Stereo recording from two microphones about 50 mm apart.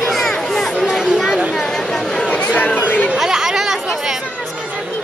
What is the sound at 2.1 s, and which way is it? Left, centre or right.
Chatter, left.